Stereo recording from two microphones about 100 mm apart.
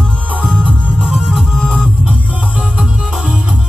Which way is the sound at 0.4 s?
10° right (ahead or behind).